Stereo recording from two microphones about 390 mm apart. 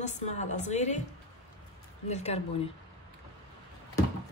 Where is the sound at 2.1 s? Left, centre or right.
Centre.